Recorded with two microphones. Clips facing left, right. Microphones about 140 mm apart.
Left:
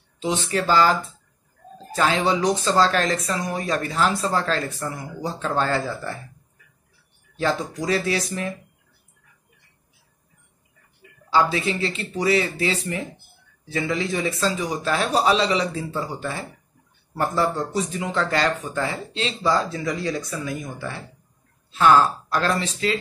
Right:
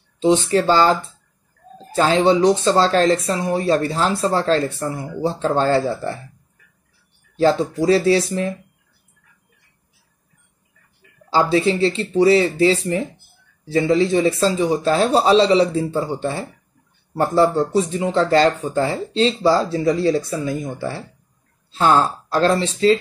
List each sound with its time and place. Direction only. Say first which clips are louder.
0.2 s speech: right 8 dB; 30° right (ahead or behind)
7.3 s speech: right 8 dB; 30° right (ahead or behind)
11.2 s speech: right 4 dB; 30° right (ahead or behind)